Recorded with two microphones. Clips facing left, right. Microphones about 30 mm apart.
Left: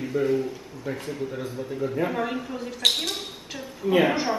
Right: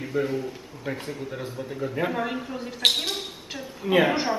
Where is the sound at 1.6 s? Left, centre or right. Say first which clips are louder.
Left 1 dB; centre.